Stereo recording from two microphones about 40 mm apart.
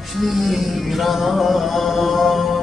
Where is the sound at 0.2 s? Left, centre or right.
Centre.